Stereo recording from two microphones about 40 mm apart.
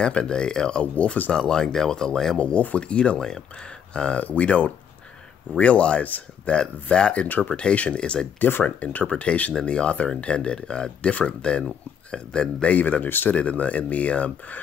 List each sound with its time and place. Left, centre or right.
0.1 s speech: left
2.3 s speech: left
4.2 s speech: left
6.0 s speech: left
6.5 s speech: left
8.4 s speech: left
8.6 s speech: left
12.6 s speech: left